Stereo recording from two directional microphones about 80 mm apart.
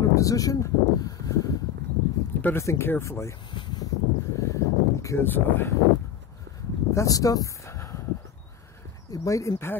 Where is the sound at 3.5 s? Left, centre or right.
Left.